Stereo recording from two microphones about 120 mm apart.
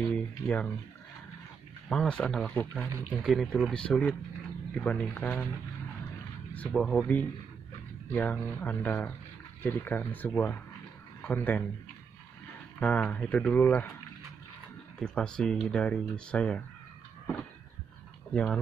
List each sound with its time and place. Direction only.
0.0 s speech: 10° left (ahead or behind)
1.9 s speech: 5° left (ahead or behind)
2.9 s speech: 20° right (ahead or behind)
3.2 s speech: centre (ahead or behind)
6.7 s speech: centre (ahead or behind)
8.1 s speech: 15° left (ahead or behind)
12.8 s speech: 10° left (ahead or behind)
15.0 s speech: 5° left (ahead or behind)
18.3 s speech: 10° left (ahead or behind)